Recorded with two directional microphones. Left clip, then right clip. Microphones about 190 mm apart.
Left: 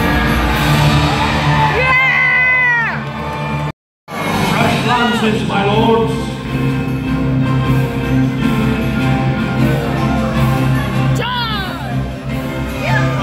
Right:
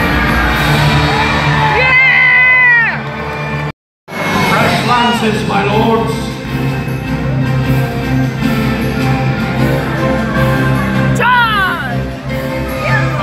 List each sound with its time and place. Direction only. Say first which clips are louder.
0.0 s music: right 3 dB; centre (ahead or behind)
11.3 s music: right 9 dB; 55° left (ahead or behind)